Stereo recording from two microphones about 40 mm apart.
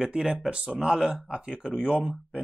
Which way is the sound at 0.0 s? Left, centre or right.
Right.